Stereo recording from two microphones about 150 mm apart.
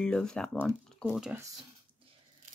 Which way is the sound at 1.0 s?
5° right (ahead or behind).